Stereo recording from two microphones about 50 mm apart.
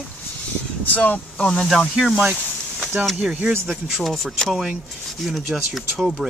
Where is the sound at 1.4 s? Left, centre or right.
Centre.